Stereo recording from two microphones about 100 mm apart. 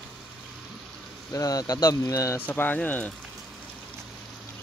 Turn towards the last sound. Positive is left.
turn(degrees=15)  # may be behind; listen again after turning